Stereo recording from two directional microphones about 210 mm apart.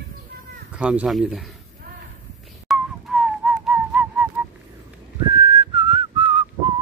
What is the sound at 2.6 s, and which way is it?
Whistling, 5° right (ahead or behind).